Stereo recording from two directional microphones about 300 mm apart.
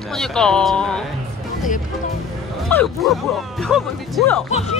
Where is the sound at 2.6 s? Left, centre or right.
Centre.